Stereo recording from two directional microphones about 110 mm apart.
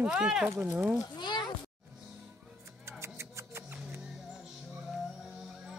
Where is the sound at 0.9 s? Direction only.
40° left (ahead or behind).